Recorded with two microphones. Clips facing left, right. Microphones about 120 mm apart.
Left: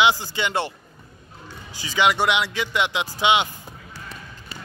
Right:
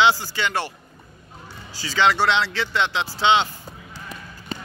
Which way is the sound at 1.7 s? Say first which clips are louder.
Right 1 dB; 20° left (ahead or behind).